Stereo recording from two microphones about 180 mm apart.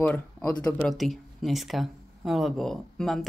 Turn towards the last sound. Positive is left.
turn(degrees=0)  # may be behind; listen again after turning